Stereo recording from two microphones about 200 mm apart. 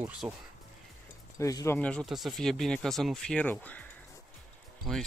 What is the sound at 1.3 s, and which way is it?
Speech, 15° left (ahead or behind).